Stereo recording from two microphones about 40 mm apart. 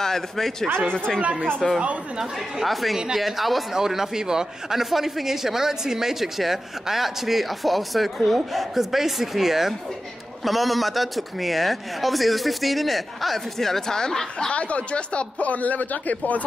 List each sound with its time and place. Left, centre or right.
0.0 s speech: centre
1.2 s speech: right
2.6 s a man's voice: centre
14.5 s speech: left